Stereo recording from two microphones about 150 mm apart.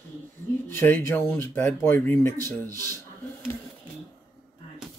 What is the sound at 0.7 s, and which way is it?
Speech, 15° left (ahead or behind).